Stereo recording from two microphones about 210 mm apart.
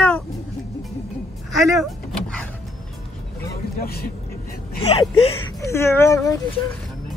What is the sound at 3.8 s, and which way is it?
Speech, 45° left (ahead or behind).